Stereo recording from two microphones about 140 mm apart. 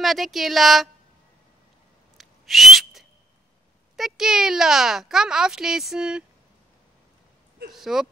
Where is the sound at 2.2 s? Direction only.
Centre (ahead or behind).